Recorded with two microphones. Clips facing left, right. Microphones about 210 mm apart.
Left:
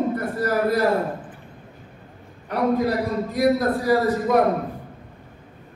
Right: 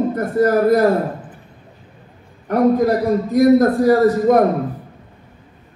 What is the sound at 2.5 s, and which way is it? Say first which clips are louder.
A man's voice: right 7 dB; 45° right (ahead or behind).